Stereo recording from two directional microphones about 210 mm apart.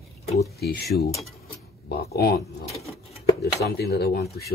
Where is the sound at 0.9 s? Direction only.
45° left (ahead or behind).